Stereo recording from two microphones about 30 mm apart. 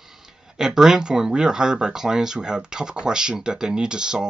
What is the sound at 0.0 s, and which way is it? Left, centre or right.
Speech, centre.